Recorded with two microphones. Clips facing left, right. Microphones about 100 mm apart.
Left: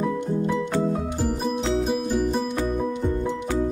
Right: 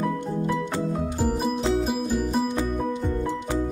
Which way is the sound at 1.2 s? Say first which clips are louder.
Right 2 dB; 5° right (ahead or behind).